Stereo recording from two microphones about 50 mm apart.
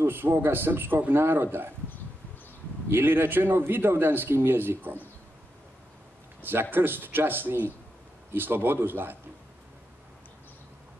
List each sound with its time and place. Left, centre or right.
0.0 s a man's voice: right
2.9 s a man's voice: right
6.4 s a man's voice: right